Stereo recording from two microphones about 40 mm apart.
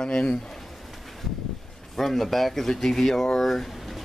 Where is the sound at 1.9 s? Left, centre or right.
Centre.